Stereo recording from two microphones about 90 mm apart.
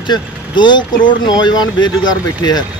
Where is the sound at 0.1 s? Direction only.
55° left (ahead or behind).